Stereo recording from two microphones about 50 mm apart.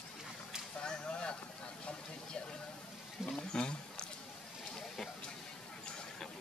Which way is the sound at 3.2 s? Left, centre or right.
Centre.